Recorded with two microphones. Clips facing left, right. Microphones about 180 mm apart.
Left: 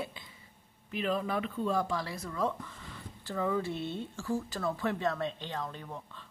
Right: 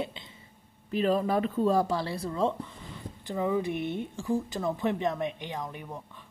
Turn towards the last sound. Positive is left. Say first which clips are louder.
# right 2 dB
turn(degrees=-15)  # may be behind; listen again after turning